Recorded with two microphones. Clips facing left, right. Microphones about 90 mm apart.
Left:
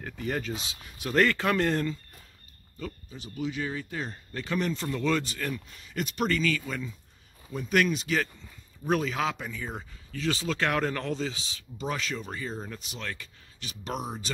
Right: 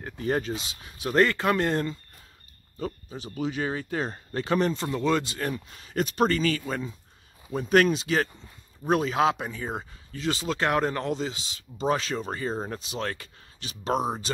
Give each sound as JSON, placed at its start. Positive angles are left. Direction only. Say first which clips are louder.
{"t": 0.2, "sound": "speech", "louder": "right 5 dB", "side_deg": -30}
{"t": 2.8, "sound": "speech", "louder": "right 5 dB", "side_deg": -40}
{"t": 4.8, "sound": "speech", "louder": "right 3 dB", "side_deg": -20}
{"t": 5.4, "sound": "speech", "louder": "right 3 dB", "side_deg": -40}
{"t": 9.7, "sound": "speech", "louder": "right 5 dB", "side_deg": -25}
{"t": 11.8, "sound": "speech", "louder": "right 6 dB", "side_deg": -35}